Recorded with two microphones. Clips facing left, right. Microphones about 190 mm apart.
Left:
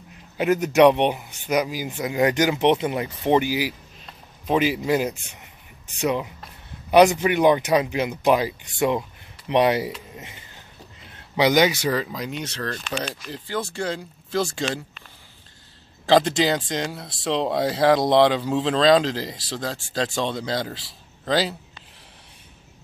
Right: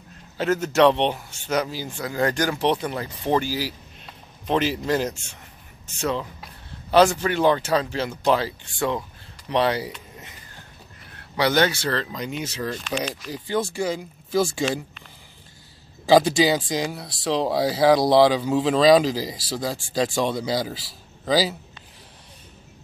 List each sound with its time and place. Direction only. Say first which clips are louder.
0.4 s a man's voice: left 2 dB; 15° left (ahead or behind)
10.1 s a sound: left 3 dB; 25° left (ahead or behind)
11.1 s speech: left 2 dB; 20° left (ahead or behind); by 14.8 s 10° right (ahead or behind)
16.1 s speech: right 2 dB; 10° right (ahead or behind)